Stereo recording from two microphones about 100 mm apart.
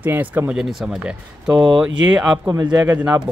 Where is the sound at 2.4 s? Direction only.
40° right (ahead or behind).